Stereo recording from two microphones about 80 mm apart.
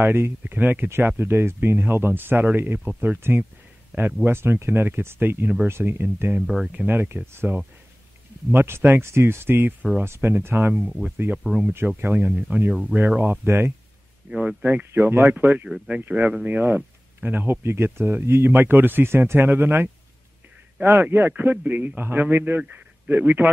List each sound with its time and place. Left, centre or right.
0.0 s speech: right
6.4 s speech: centre
6.7 s speech: right
10.7 s speech: centre
12.0 s a man's voice: right